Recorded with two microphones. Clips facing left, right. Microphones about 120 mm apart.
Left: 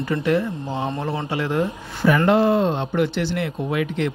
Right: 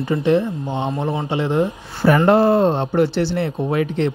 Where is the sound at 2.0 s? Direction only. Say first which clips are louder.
Right 3 dB; 40° right (ahead or behind).